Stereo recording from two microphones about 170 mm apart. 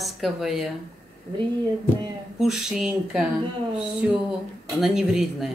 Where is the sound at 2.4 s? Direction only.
Centre (ahead or behind).